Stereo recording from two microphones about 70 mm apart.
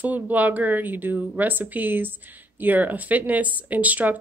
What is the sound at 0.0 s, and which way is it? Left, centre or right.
Speech, right.